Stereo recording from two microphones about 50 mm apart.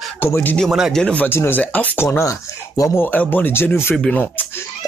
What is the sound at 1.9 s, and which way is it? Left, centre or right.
Speech, left.